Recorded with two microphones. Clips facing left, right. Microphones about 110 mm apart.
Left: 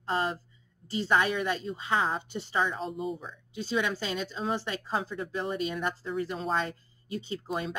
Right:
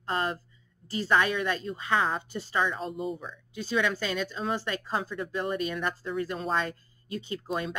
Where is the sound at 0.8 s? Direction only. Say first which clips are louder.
Right 1 dB; 20° left (ahead or behind).